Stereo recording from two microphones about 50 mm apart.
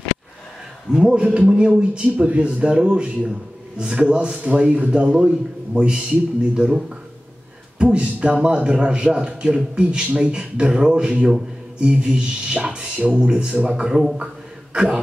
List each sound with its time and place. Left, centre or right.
1.0 s a man's voice: right
7.8 s a man's voice: right
14.2 s a sound: centre